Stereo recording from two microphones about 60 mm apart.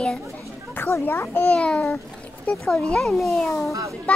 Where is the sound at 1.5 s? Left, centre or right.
Centre.